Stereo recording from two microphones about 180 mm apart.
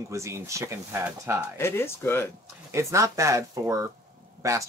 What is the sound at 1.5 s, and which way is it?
Speech, 15° left (ahead or behind).